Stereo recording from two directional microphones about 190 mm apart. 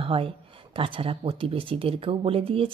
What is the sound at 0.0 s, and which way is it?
A woman's voice, 30° right (ahead or behind).